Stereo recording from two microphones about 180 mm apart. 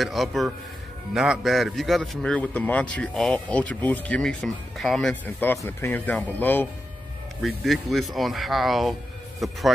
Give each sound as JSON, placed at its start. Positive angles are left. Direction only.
{"t": 0.0, "sound": "a man's voice", "side_deg": 0}